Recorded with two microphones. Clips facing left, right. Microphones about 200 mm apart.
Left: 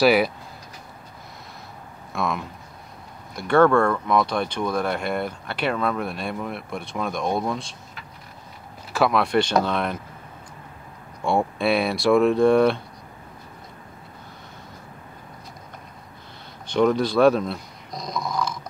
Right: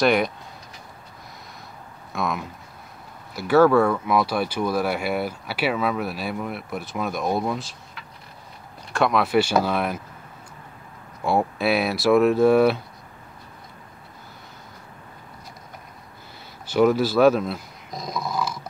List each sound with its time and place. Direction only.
0.0 s speech: 5° left (ahead or behind)
2.1 s speech: centre (ahead or behind)
8.9 s speech: centre (ahead or behind)
11.2 s speech: centre (ahead or behind)
16.6 s speech: 5° right (ahead or behind)